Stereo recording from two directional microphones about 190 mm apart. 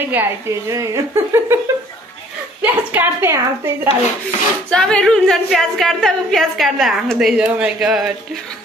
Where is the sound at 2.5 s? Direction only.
10° right (ahead or behind).